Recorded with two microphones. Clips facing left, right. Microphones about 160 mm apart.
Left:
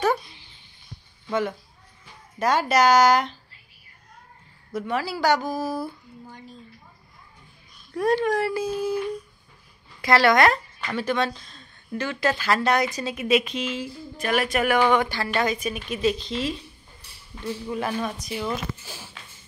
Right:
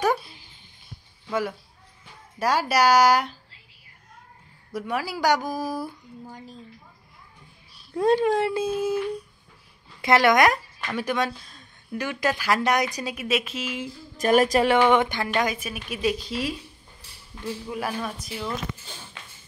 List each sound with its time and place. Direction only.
0.0 s a sound: 10° right (ahead or behind)
2.3 s speech: 10° right (ahead or behind)
4.7 s speech: 10° right (ahead or behind)
7.7 s a sound: 25° right (ahead or behind)
8.3 s speech: 25° right (ahead or behind)
10.0 s speech: 15° right (ahead or behind)
14.2 s speech: 40° right (ahead or behind)
14.8 s speech: 20° right (ahead or behind)
17.6 s speech: 5° right (ahead or behind)